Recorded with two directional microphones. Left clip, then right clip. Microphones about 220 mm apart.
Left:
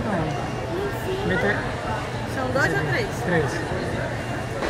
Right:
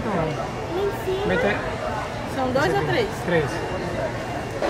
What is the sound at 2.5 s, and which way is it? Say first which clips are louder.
Speech: right 1 dB; 25° right (ahead or behind).